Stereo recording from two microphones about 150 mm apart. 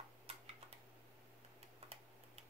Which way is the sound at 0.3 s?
40° right (ahead or behind).